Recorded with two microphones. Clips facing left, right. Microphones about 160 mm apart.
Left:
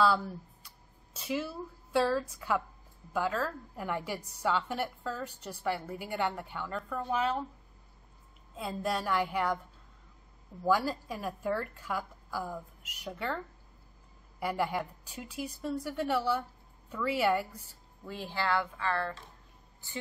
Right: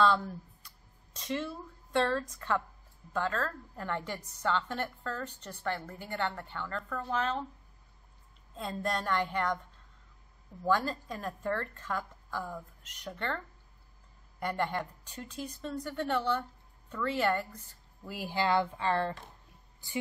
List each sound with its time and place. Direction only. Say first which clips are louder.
0.0 s a woman's voice: even; 5° left (ahead or behind)
8.5 s a woman's voice: left 1 dB; 5° left (ahead or behind)
10.6 s a woman's voice: left 1 dB; 10° left (ahead or behind)
14.4 s a woman's voice: left 1 dB; 5° left (ahead or behind)
18.0 s speech: right 3 dB; 10° right (ahead or behind)